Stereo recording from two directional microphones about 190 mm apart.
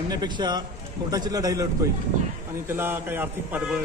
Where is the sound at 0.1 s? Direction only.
20° right (ahead or behind).